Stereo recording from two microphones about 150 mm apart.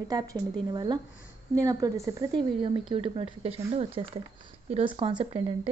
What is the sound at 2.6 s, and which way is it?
Speech, 35° right (ahead or behind).